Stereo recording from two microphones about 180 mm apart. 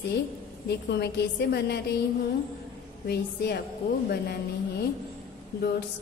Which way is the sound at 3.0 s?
65° left (ahead or behind).